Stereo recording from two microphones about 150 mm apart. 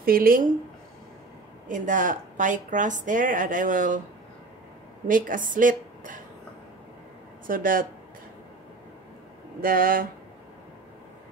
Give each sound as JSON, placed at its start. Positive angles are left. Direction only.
{"t": 0.0, "sound": "speech", "side_deg": -75}
{"t": 1.7, "sound": "a woman's voice", "side_deg": -60}
{"t": 5.0, "sound": "a woman's voice", "side_deg": -65}
{"t": 7.4, "sound": "speech", "side_deg": -65}
{"t": 9.6, "sound": "speech", "side_deg": -70}